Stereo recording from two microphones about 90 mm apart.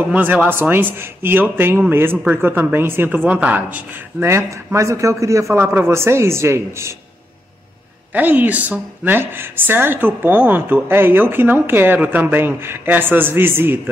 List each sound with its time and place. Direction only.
0.1 s a man's voice: 20° right (ahead or behind)
8.1 s a man's voice: 20° right (ahead or behind)